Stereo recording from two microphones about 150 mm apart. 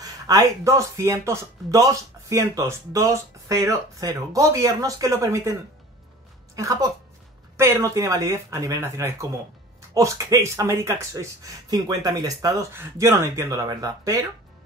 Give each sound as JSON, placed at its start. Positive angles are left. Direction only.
{"t": 0.0, "sound": "speech", "side_deg": -25}